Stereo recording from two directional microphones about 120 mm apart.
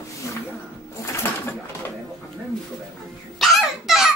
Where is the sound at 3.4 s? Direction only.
Centre (ahead or behind).